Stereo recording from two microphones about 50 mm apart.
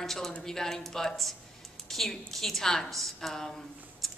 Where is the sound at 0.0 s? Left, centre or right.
Centre.